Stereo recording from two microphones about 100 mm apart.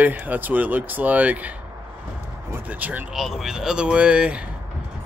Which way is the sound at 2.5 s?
15° right (ahead or behind).